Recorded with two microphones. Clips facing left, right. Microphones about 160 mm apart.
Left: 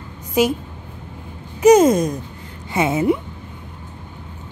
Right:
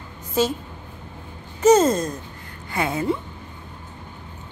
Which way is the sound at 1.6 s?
10° left (ahead or behind).